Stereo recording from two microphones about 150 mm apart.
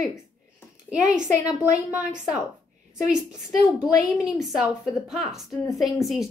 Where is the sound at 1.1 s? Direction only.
5° right (ahead or behind).